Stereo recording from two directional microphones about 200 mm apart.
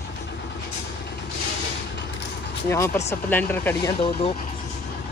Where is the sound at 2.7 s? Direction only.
15° left (ahead or behind).